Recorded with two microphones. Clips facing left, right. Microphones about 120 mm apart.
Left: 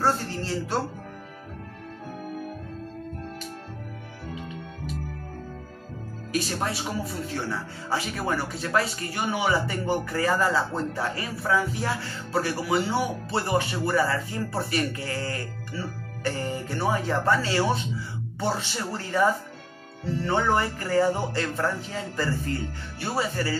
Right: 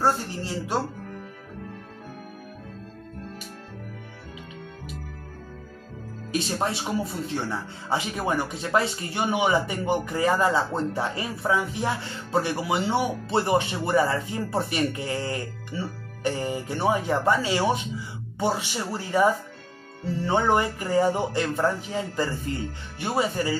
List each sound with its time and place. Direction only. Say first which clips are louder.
0.0 s speech: right 1 dB; 15° right (ahead or behind)
6.3 s speech: right 1 dB; 25° right (ahead or behind)